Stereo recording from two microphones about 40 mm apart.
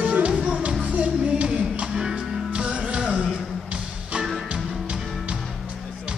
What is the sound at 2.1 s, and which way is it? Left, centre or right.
Music, right.